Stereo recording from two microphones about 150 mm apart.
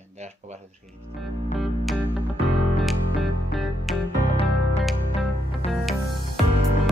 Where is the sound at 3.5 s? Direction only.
Centre (ahead or behind).